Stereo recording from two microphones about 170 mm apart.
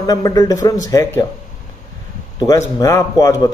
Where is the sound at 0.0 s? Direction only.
20° left (ahead or behind).